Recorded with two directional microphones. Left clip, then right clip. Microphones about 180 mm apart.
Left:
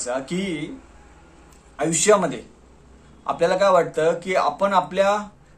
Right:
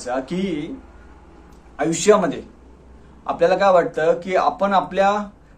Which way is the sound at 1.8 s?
15° left (ahead or behind).